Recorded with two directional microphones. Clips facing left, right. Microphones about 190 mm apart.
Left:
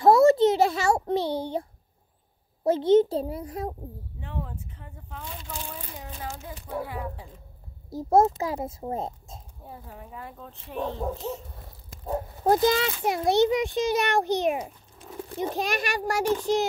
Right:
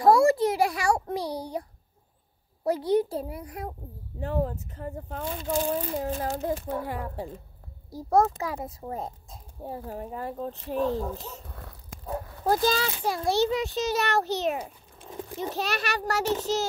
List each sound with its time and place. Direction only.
0.0 s a sound: 25° left (ahead or behind)
2.6 s a child's voice: 25° left (ahead or behind)
4.2 s a child's voice: 40° right (ahead or behind)
7.9 s a child's voice: 20° left (ahead or behind)
9.8 s speech: 40° right (ahead or behind)
12.4 s a child's voice: 20° left (ahead or behind)